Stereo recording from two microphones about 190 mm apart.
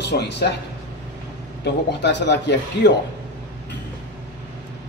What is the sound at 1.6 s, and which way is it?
Speech, 65° left (ahead or behind).